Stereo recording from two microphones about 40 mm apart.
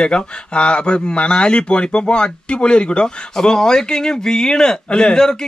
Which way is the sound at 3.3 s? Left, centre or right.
Centre.